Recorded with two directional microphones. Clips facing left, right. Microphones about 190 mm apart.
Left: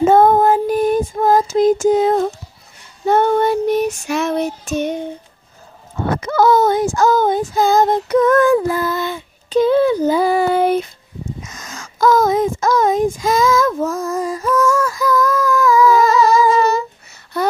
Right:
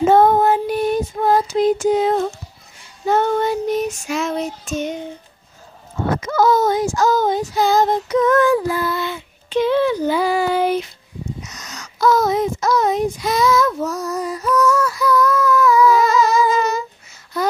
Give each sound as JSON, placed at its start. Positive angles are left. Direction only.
{"t": 0.1, "sound": "female singing", "side_deg": 50}
{"t": 3.1, "sound": "child singing", "side_deg": 55}
{"t": 6.2, "sound": "child singing", "side_deg": 60}
{"t": 10.3, "sound": "child singing", "side_deg": 55}
{"t": 11.4, "sound": "a sound", "side_deg": 50}
{"t": 15.1, "sound": "humming", "side_deg": 45}
{"t": 16.5, "sound": "a sound", "side_deg": 60}